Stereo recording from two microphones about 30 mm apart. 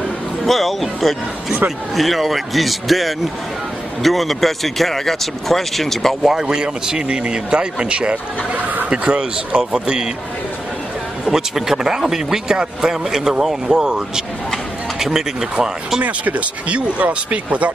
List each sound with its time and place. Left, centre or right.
0.5 s speech: centre
6.2 s speech: centre
6.5 s a man's voice: right
8.6 s a sound: right
9.1 s speech: right
9.7 s a man's voice: right
11.3 s a man's voice: centre
15.0 s speech: centre
16.0 s speech: right